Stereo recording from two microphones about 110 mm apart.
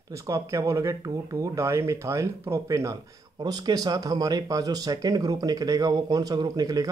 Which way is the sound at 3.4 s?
40° right (ahead or behind).